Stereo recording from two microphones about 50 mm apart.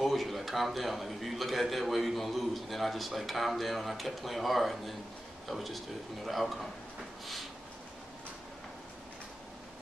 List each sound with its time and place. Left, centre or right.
0.0 s a man's voice: centre